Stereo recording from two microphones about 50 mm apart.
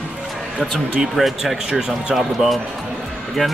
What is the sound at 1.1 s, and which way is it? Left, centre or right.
Speech, centre.